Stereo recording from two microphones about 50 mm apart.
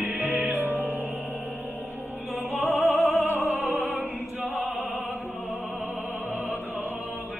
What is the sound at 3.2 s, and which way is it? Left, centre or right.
Music, right.